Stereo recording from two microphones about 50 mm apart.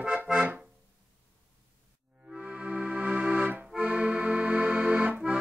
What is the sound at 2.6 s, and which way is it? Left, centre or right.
Accordion, right.